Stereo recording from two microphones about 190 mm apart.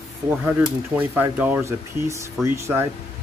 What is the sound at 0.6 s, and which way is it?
Speech, 10° right (ahead or behind).